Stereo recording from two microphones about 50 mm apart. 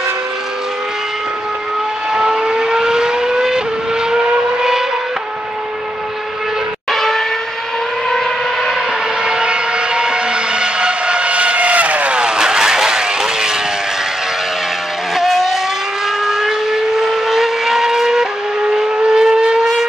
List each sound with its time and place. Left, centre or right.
2.1 s vehicle: centre
6.9 s vehicle: centre
8.1 s civil defense siren: centre
9.2 s vehicle: centre
15.1 s vehicle: centre